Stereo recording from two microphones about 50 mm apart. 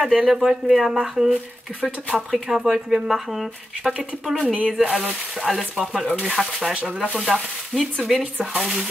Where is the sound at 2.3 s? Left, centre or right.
Centre.